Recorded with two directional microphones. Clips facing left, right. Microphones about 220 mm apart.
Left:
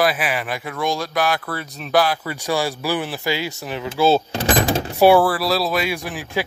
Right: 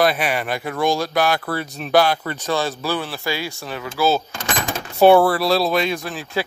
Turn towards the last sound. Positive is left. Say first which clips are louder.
# even
turn(degrees=15)  # may be behind; listen again after turning